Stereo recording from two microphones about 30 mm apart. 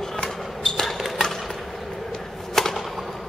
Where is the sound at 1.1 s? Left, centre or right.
Centre.